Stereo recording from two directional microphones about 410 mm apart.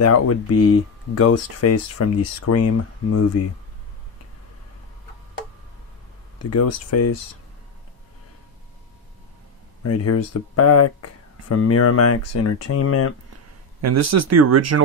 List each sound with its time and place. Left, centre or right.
0.0 s speech: left
6.5 s speech: left
9.8 s speech: left
13.7 s speech: right